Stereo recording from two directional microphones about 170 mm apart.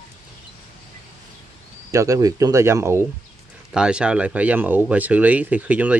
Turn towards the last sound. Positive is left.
turn(degrees=-10)  # may be behind; listen again after turning